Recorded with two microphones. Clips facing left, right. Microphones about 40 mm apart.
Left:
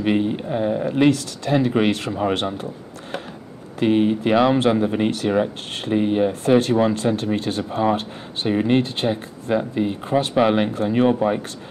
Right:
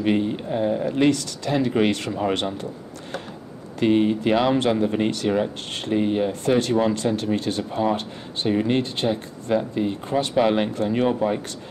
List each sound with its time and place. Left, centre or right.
0.0 s speech: centre
3.8 s speech: centre